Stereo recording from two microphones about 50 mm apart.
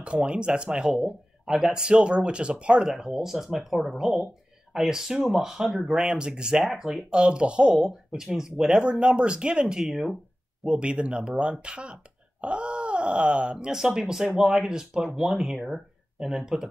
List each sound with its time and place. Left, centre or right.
0.0 s speech: right
0.9 s speech: centre
2.9 s speech: centre
6.6 s speech: centre
7.1 s speech: centre
7.7 s speech: centre
13.7 s speech: centre
15.6 s speech: centre